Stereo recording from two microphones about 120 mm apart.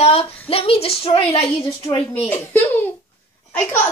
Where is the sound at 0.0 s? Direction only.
50° left (ahead or behind).